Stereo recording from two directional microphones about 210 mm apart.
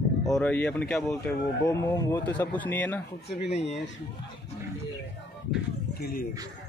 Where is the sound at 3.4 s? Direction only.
30° left (ahead or behind).